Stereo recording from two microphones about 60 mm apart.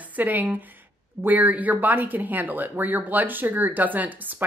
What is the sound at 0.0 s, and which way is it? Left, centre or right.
A woman's voice, right.